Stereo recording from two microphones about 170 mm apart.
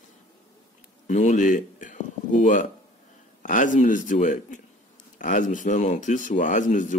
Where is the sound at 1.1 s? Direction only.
45° left (ahead or behind).